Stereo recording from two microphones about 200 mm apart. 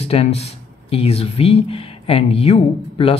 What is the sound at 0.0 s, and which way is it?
Speech, 30° left (ahead or behind).